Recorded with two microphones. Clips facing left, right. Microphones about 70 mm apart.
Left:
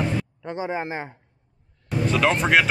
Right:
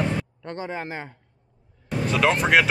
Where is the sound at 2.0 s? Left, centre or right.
Centre.